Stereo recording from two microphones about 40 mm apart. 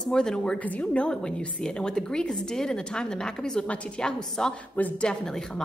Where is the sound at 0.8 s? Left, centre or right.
Left.